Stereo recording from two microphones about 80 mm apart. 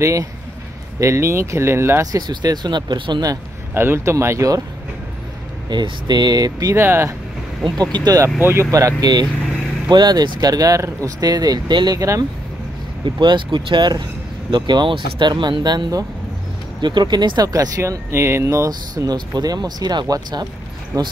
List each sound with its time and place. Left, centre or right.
0.0 s speech: right
2.1 s speech: right
3.7 s speech: right
5.7 s speech: right
6.7 s speech: right
7.6 s speech: right
8.4 s speech: right
8.7 s speech: right
13.0 s speech: right
16.8 s speech: right
18.1 s speech: right
18.9 s speech: right
20.9 s speech: right